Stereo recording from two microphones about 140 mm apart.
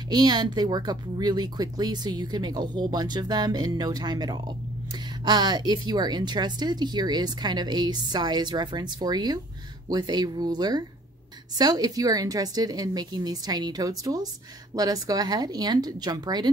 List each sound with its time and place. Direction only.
0.1 s a woman's voice: 30° right (ahead or behind)